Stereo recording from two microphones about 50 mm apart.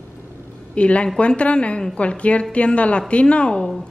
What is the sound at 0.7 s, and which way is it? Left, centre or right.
Speech, left.